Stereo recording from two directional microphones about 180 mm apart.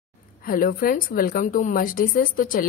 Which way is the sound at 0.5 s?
50° left (ahead or behind).